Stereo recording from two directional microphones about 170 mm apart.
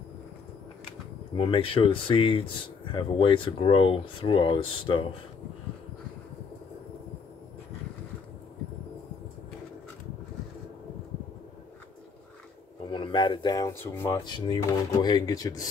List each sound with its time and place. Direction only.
1.3 s speech: 30° left (ahead or behind)
12.9 s a sound: 25° left (ahead or behind)
14.2 s speech: 25° left (ahead or behind)